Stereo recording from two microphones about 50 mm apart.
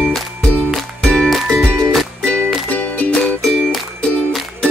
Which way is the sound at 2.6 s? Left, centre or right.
Left.